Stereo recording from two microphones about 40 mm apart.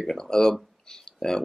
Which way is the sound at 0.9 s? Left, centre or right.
Centre.